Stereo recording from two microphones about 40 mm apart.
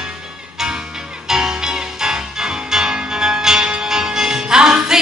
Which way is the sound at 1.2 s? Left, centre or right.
Centre.